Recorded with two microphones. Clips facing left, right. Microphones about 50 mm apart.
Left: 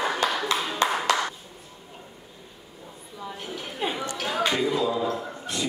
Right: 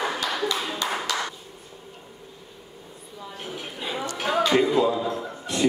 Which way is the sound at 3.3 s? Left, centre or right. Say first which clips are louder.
Left 1 dB; centre.